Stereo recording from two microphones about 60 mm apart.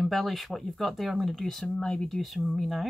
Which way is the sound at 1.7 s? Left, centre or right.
Centre.